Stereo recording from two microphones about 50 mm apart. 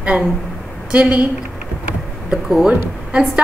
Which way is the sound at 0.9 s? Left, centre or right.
Right.